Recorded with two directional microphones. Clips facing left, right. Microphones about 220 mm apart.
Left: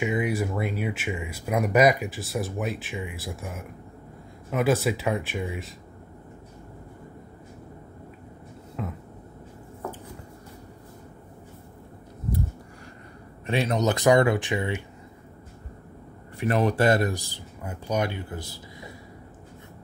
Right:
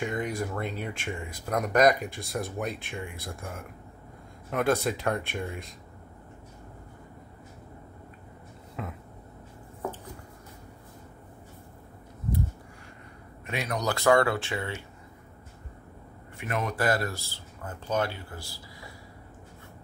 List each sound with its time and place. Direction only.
0.0 s speech: 5° left (ahead or behind)
8.8 s speech: centre (ahead or behind)
13.5 s speech: 25° left (ahead or behind)
16.3 s speech: 35° left (ahead or behind)